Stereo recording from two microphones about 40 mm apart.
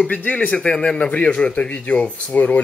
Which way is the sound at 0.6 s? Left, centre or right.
Left.